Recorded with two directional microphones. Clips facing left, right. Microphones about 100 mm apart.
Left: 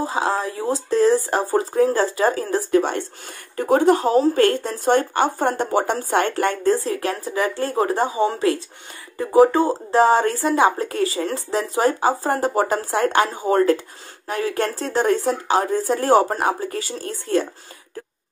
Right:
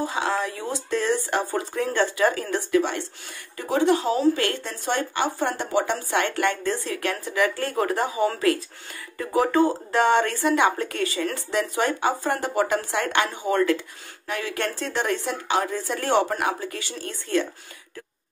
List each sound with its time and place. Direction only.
0.0 s speech: 35° left (ahead or behind)